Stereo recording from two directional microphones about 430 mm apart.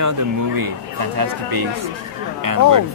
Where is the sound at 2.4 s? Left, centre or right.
Right.